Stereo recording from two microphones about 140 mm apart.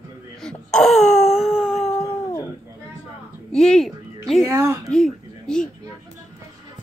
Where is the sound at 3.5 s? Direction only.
5° left (ahead or behind).